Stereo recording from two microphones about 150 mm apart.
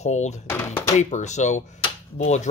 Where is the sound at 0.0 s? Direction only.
50° left (ahead or behind).